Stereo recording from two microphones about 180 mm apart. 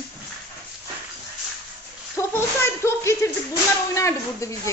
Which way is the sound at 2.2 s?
15° left (ahead or behind).